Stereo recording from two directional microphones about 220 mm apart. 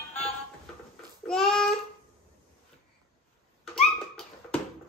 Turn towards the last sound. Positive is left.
turn(degrees=0)  # may be behind; listen again after turning